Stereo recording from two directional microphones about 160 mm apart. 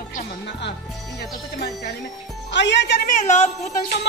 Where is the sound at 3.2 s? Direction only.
45° left (ahead or behind).